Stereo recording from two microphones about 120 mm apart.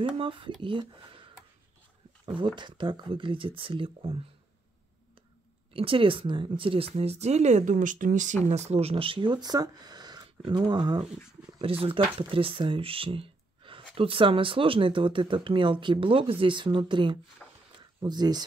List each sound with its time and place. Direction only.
0.2 s speech: 45° right (ahead or behind)
2.2 s speech: 40° right (ahead or behind)
5.7 s speech: 50° right (ahead or behind)
11.6 s speech: 50° right (ahead or behind)
17.4 s a sound: 5° left (ahead or behind)
17.7 s a sound: 35° right (ahead or behind)